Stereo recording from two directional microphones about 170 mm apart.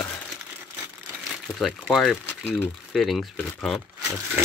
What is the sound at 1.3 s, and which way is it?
Speech, centre (ahead or behind).